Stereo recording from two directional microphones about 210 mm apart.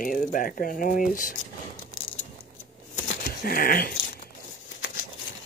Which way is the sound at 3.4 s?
45° left (ahead or behind).